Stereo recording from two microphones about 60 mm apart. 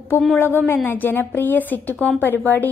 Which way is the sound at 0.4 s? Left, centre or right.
Left.